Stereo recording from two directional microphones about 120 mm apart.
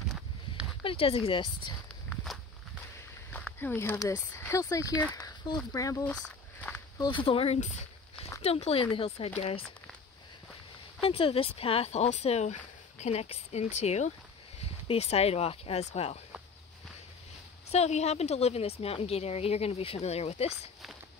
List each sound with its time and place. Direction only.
0.8 s speech: 50° left (ahead or behind)
3.3 s a sound: 15° left (ahead or behind)
4.0 s speech: 25° left (ahead or behind)
5.1 s a sound: 30° left (ahead or behind)
5.7 s speech: 30° left (ahead or behind)
7.0 s speech: 45° left (ahead or behind)
11.0 s a woman's voice: 50° left (ahead or behind)
17.6 s a woman's voice: 65° left (ahead or behind)